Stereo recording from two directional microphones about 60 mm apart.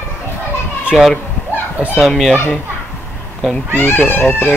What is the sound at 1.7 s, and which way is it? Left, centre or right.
Speech, right.